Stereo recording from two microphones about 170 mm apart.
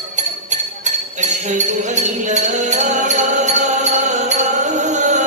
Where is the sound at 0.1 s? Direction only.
45° right (ahead or behind).